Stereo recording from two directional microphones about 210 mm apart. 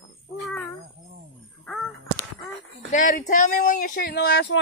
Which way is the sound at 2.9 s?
35° left (ahead or behind).